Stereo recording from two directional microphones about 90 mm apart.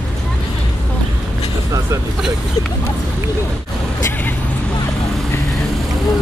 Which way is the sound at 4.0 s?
25° left (ahead or behind).